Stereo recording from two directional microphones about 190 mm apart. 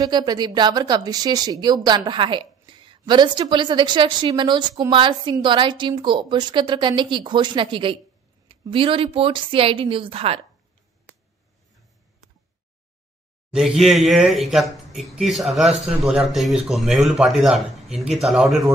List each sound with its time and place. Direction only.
0.0 s a woman's voice: 20° right (ahead or behind)
13.5 s speech: 5° right (ahead or behind)